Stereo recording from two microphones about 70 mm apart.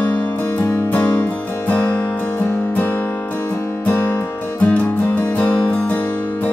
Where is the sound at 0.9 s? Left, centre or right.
Left.